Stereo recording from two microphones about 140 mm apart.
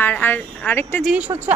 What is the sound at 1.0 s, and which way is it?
Speech, 10° right (ahead or behind).